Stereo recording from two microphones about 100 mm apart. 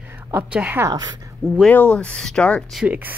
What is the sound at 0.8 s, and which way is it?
Speech, 40° right (ahead or behind).